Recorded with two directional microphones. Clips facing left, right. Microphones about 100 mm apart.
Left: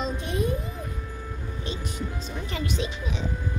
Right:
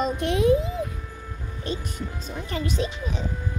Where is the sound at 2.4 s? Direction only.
35° right (ahead or behind).